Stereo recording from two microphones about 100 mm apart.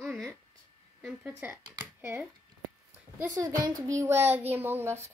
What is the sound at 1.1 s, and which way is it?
Speech, 10° right (ahead or behind).